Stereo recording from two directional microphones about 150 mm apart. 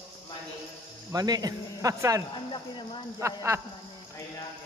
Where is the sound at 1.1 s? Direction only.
25° right (ahead or behind).